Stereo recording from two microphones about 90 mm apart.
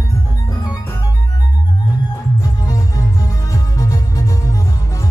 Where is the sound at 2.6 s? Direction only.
40° left (ahead or behind).